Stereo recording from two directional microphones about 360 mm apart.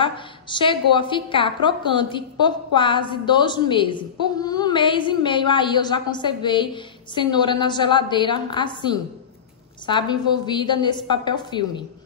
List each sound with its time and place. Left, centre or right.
0.0 s a woman's voice: centre